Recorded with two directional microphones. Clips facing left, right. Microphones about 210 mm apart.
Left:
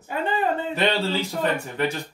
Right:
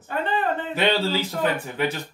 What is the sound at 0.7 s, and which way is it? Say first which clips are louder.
A woman's voice: right 1 dB; centre (ahead or behind).